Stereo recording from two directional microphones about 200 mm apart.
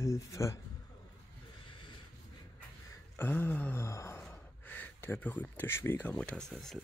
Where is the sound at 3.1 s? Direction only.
10° left (ahead or behind).